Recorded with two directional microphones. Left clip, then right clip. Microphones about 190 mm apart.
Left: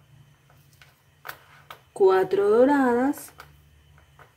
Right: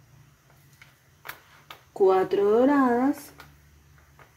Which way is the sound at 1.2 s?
25° left (ahead or behind).